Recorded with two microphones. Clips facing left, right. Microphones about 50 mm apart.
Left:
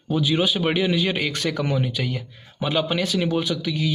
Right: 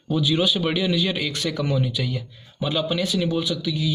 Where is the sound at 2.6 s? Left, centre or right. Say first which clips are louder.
Left 1 dB; left.